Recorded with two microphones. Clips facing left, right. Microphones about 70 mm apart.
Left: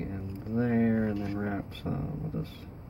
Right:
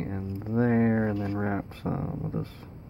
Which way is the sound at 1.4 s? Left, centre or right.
Right.